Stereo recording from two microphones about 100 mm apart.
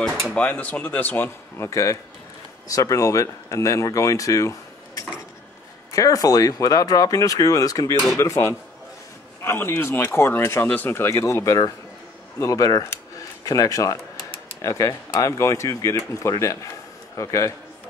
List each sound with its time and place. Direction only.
0.0 s speech: 5° left (ahead or behind)
0.4 s speech: 15° left (ahead or behind); by 12.8 s 35° left (ahead or behind)
12.9 s a sound: 35° left (ahead or behind)
14.6 s a man's voice: 35° left (ahead or behind)